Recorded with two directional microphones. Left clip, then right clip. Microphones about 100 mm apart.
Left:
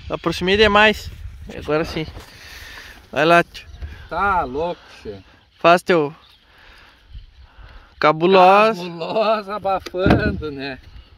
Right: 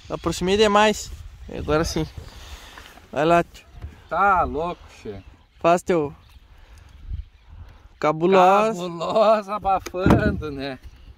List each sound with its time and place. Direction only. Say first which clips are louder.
0.1 s speech: left 4 dB; 15° right (ahead or behind)
2.4 s a sound: left 6 dB; 30° right (ahead or behind)
3.1 s a sound: left 4 dB; 10° right (ahead or behind)
4.1 s speech: right 1 dB; 35° right (ahead or behind)
5.6 s speech: left 5 dB; 15° right (ahead or behind)
8.0 s speech: left 4 dB; 20° right (ahead or behind)
8.9 s speech: right 1 dB; 40° right (ahead or behind)
10.4 s speech: left 2 dB; 65° right (ahead or behind)